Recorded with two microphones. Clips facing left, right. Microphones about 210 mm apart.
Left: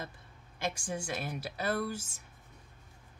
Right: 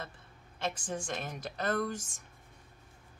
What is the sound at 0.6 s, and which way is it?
Speech, 10° left (ahead or behind).